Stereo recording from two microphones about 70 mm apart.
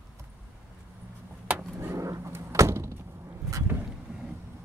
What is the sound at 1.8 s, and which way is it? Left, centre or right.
Vehicle, right.